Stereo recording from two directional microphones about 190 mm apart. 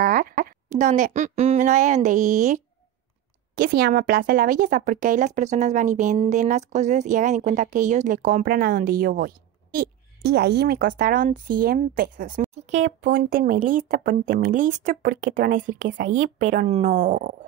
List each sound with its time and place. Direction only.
0.0 s speech: 50° right (ahead or behind)
13.0 s speech: 50° right (ahead or behind)